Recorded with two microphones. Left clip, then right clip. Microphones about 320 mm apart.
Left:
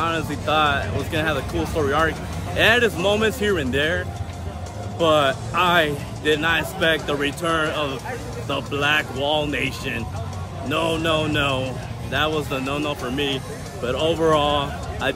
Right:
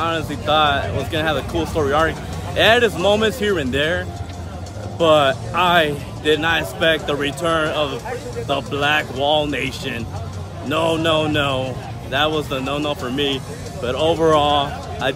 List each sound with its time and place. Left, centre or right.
0.0 s speech: centre